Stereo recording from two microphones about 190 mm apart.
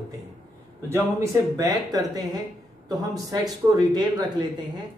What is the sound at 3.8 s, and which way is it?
Speech, 20° right (ahead or behind).